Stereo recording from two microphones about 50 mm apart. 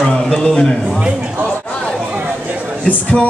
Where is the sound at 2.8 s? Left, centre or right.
Left.